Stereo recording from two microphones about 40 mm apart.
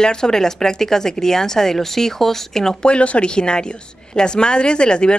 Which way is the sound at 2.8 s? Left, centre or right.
Left.